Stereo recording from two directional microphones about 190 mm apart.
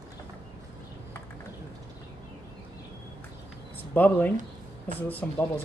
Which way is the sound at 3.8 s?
10° left (ahead or behind).